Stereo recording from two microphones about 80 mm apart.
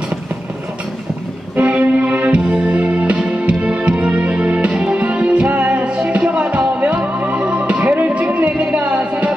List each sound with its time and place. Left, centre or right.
1.6 s music: centre